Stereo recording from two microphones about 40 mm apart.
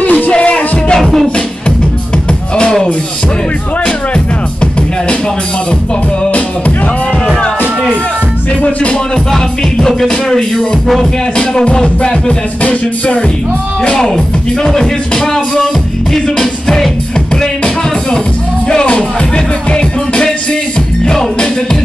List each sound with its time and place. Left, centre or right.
0.0 s music: left
0.3 s music: left
0.9 s music: centre
9.3 s music: centre
12.0 s music: left
14.6 s music: centre
18.7 s music: left